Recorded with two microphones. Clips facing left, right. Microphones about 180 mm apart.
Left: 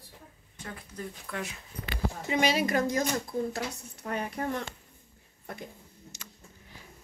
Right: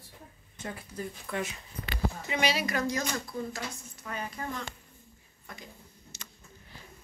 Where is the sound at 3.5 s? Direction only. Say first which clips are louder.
Left 4 dB; 60° left (ahead or behind).